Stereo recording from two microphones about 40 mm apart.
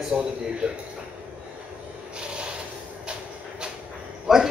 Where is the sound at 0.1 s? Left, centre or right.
Right.